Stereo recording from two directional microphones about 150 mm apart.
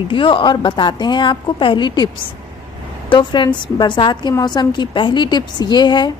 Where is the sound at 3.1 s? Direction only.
30° left (ahead or behind).